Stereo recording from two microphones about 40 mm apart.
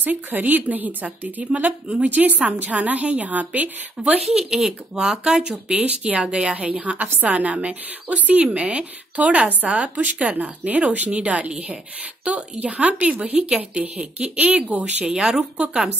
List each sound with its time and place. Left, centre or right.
0.0 s speech: right
1.4 s a woman's voice: right
4.4 s a woman's voice: centre; by 8.8 s right
9.1 s a woman's voice: right
15.0 s speech: centre